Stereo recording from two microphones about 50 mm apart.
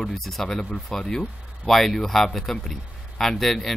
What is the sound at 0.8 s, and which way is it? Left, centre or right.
Speech, centre.